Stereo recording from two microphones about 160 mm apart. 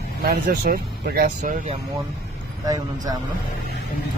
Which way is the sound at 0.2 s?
70° right (ahead or behind).